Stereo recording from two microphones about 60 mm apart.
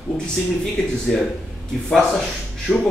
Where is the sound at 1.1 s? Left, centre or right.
Centre.